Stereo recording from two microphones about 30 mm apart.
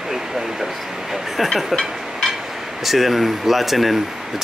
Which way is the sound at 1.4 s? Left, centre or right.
Centre.